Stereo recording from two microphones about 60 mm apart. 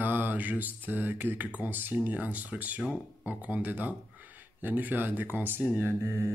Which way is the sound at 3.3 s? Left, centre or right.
Right.